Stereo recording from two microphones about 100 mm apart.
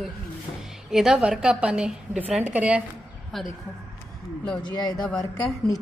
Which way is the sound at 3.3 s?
5° left (ahead or behind).